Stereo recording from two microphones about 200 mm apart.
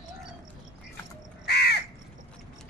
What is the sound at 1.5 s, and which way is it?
Crow, 55° left (ahead or behind).